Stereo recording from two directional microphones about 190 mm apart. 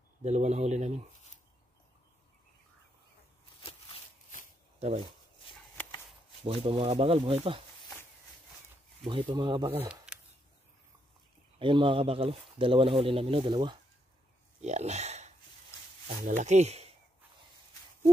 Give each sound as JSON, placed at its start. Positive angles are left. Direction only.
{"t": 0.2, "sound": "speech", "side_deg": -35}
{"t": 4.7, "sound": "speech", "side_deg": -35}
{"t": 6.4, "sound": "speech", "side_deg": -30}
{"t": 9.0, "sound": "speech", "side_deg": -25}
{"t": 11.5, "sound": "speech", "side_deg": -25}
{"t": 14.6, "sound": "a sound", "side_deg": -35}
{"t": 16.1, "sound": "speech", "side_deg": -40}